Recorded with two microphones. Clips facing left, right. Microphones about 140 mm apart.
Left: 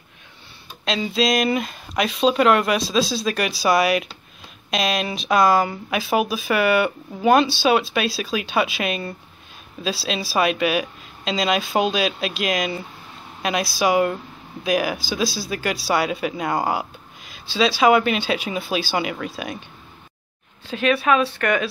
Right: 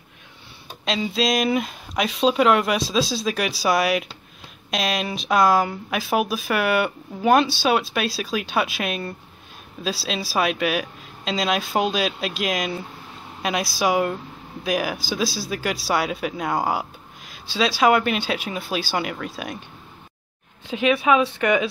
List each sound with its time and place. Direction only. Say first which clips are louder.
0.8 s speech: left 1 dB; 5° right (ahead or behind)
20.6 s speech: even; 15° right (ahead or behind)